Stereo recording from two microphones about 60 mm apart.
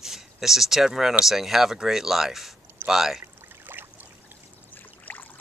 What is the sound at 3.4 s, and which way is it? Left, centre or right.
Boat, right.